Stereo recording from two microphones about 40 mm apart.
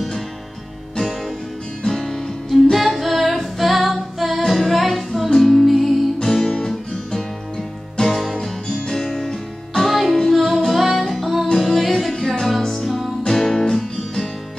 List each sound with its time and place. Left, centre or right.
1.9 s music: centre
6.2 s guitar: centre
8.0 s music: centre
8.4 s music: centre
9.0 s music: centre